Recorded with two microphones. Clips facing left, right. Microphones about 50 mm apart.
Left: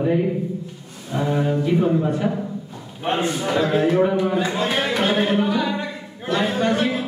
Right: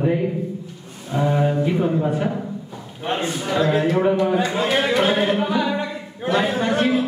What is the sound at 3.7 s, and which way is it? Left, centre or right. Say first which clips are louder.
A man's voice: even; centre.